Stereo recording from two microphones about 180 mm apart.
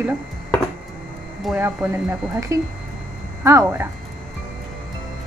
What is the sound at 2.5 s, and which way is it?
A woman's voice, 15° right (ahead or behind).